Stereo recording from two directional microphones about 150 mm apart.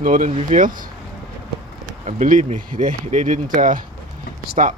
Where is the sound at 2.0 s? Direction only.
60° right (ahead or behind).